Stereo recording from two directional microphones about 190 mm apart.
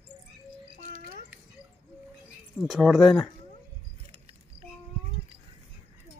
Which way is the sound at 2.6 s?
Centre (ahead or behind).